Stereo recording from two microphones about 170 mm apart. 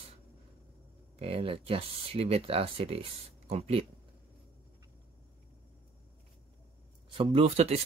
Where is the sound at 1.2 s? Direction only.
35° right (ahead or behind).